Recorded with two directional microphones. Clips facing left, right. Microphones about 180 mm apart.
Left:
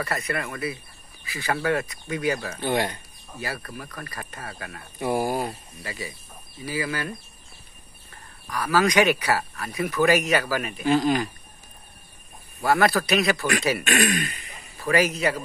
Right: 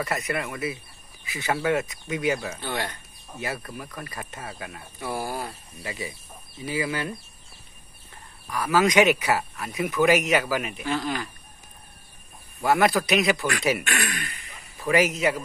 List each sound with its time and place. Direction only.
0.0 s a man's voice: 15° right (ahead or behind)
2.6 s speech: 20° left (ahead or behind)
3.3 s a man's voice: 20° right (ahead or behind)
5.0 s speech: 15° left (ahead or behind)
5.8 s speech: 25° right (ahead or behind)
8.5 s speech: 20° right (ahead or behind)
10.9 s speech: 20° left (ahead or behind)
12.6 s a man's voice: 15° right (ahead or behind)
13.8 s speech: 20° left (ahead or behind)
14.8 s a man's voice: 20° right (ahead or behind)